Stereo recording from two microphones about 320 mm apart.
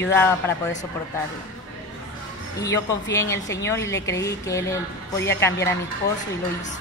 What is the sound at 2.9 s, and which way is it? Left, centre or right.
A woman's voice, centre.